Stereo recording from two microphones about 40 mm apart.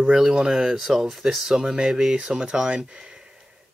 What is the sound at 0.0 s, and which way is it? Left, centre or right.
Speech, right.